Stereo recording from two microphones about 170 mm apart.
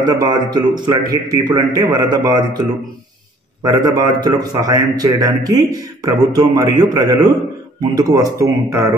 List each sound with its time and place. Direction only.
0.0 s a man's voice: 25° right (ahead or behind)
3.6 s a man's voice: 20° right (ahead or behind)